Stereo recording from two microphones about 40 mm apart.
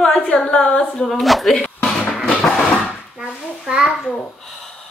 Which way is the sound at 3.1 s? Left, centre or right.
Centre.